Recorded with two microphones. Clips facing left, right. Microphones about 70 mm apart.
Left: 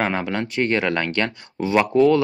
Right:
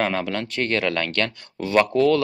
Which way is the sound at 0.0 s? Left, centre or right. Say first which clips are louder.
Left 1 dB; centre.